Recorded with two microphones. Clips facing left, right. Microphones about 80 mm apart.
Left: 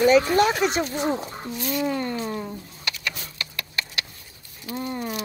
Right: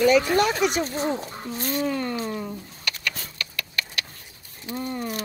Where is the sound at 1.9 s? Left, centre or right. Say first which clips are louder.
Even; left.